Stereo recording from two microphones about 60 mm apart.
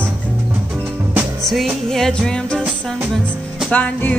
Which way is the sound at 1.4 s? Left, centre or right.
Centre.